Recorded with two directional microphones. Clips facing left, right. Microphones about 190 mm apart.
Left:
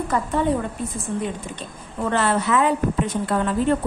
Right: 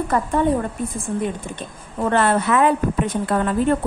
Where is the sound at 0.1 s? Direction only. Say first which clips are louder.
Right 2 dB; 55° right (ahead or behind).